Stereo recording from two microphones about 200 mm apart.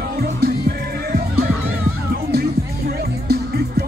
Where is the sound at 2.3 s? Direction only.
50° right (ahead or behind).